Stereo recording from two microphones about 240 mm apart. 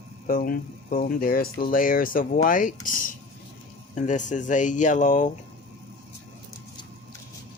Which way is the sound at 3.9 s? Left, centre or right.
Left.